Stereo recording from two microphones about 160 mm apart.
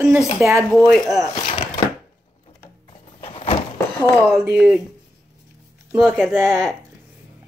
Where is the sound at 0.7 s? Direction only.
5° left (ahead or behind).